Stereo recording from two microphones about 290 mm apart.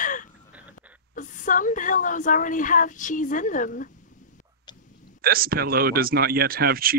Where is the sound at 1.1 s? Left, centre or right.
Left.